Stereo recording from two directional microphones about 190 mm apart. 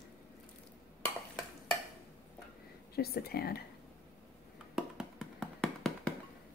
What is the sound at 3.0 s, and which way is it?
Speech, 55° left (ahead or behind).